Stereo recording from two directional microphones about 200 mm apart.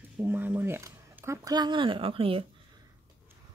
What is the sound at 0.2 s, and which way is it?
Speech, 10° right (ahead or behind).